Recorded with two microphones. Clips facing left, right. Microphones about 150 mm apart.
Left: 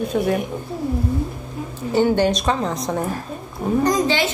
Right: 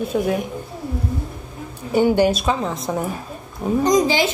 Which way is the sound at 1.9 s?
10° right (ahead or behind).